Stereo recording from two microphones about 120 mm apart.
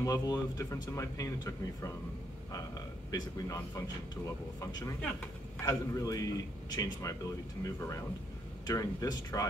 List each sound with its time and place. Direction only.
0.0 s speech: 30° left (ahead or behind)
3.1 s speech: 30° left (ahead or behind)